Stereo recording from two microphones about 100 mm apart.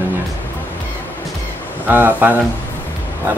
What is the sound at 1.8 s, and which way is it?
Speech, 20° right (ahead or behind).